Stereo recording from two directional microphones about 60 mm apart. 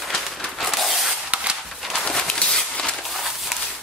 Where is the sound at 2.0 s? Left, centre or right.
Centre.